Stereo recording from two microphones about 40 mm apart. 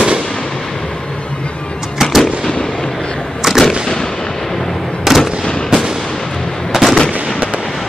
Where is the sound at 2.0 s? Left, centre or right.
Centre.